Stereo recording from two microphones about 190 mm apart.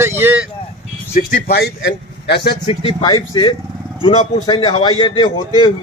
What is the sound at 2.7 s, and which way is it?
A man's voice, 25° left (ahead or behind).